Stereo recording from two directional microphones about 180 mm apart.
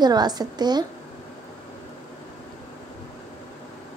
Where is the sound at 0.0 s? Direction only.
25° right (ahead or behind).